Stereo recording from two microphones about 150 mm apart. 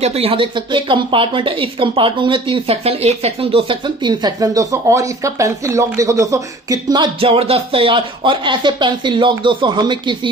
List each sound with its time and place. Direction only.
0.0 s speech: 40° right (ahead or behind)